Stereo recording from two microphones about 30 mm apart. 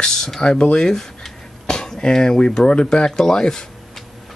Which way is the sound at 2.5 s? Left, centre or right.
Left.